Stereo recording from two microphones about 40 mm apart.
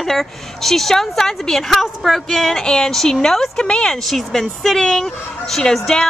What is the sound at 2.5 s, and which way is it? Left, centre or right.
Speech, centre.